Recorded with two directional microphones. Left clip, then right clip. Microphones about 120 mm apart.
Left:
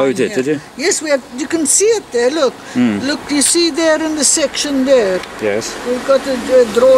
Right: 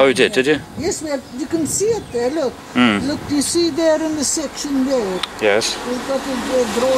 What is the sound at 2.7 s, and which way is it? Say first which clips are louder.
Speech: right 5 dB; 35° left (ahead or behind).